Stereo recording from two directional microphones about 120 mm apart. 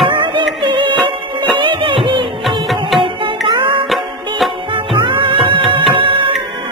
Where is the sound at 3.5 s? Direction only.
45° right (ahead or behind).